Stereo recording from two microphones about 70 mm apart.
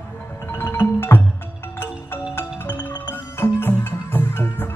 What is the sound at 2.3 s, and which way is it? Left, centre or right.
Music, left.